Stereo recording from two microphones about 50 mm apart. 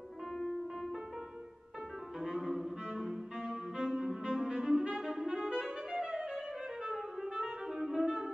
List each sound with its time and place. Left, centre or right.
0.4 s music: centre
2.1 s music: centre
5.3 s clarinet: centre
6.9 s music: centre